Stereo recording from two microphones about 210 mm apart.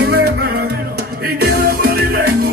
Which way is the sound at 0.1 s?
50° right (ahead or behind).